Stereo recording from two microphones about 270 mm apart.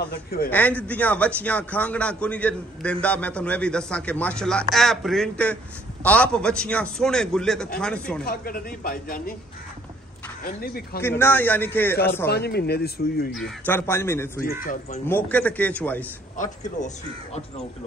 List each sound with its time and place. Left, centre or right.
0.5 s a man's voice: centre
8.3 s speech: left
10.4 s speech: left
11.0 s speech: centre
12.3 s speech: left
13.3 s speech: centre
14.6 s speech: left
15.0 s a man's voice: centre
16.6 s speech: left